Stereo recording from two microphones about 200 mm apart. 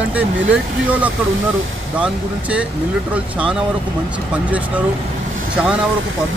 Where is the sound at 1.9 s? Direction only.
5° right (ahead or behind).